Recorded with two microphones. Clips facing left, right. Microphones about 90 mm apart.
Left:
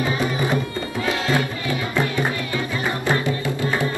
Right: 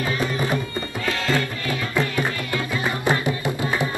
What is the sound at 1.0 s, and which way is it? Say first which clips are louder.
Music: left 1 dB; 15° left (ahead or behind).